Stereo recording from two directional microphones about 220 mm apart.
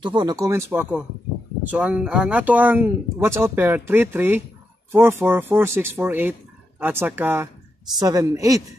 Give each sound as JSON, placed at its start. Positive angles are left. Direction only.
{"t": 0.0, "sound": "speech", "side_deg": -20}